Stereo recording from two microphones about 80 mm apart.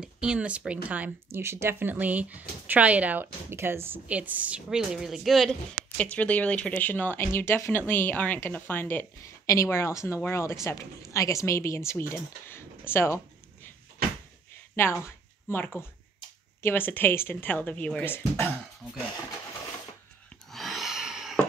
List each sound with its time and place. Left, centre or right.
0.0 s a woman's voice: centre
1.3 s a woman's voice: right; by 5.6 s centre
5.9 s speech: centre
9.5 s a woman's voice: left
14.8 s speech: left; by 18.0 s centre
20.5 s a sound: centre